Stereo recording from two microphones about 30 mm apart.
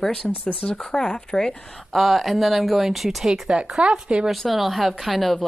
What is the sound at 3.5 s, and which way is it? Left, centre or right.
Speech, right.